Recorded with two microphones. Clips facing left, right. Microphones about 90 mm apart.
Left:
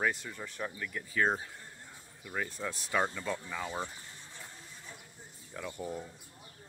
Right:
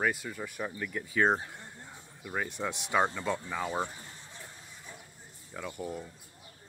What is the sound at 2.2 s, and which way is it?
Speech, 10° right (ahead or behind).